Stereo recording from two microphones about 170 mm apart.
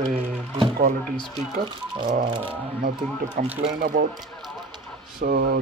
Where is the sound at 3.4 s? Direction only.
55° right (ahead or behind).